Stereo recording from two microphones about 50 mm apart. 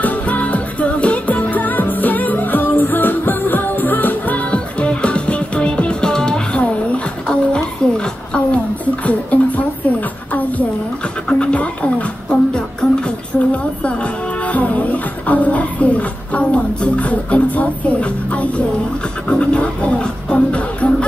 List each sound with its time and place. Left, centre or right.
0.0 s music: left; by 6.6 s centre
6.6 s a sound: left
9.0 s music: left
11.2 s music: left
13.3 s a sound: left
13.8 s music: left